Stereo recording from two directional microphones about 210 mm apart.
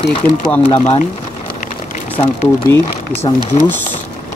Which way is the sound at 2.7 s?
10° left (ahead or behind).